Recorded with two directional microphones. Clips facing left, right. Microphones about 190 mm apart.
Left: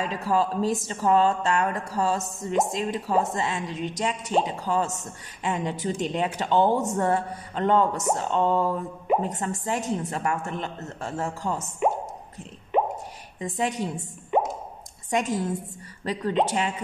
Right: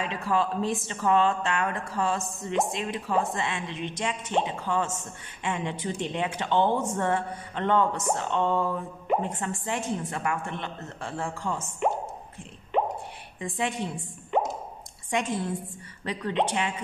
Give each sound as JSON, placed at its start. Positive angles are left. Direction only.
{"t": 0.0, "sound": "speech", "side_deg": 40}
{"t": 12.9, "sound": "a sound", "side_deg": 40}
{"t": 15.0, "sound": "speech", "side_deg": 40}